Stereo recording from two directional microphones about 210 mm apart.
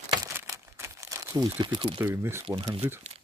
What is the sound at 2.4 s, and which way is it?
Speech, 25° right (ahead or behind).